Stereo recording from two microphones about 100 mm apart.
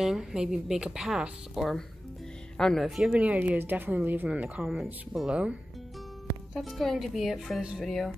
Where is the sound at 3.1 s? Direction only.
15° right (ahead or behind).